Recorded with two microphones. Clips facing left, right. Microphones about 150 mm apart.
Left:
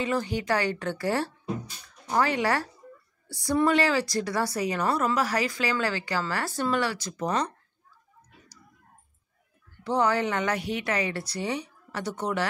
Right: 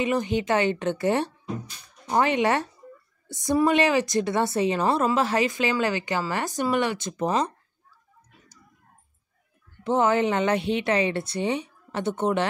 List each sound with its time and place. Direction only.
0.0 s a woman's voice: 20° right (ahead or behind)
9.8 s a woman's voice: 20° right (ahead or behind)